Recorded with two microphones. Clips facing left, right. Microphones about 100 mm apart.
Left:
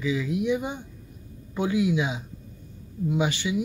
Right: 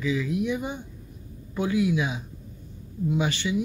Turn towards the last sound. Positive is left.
turn(degrees=15)  # may be behind; listen again after turning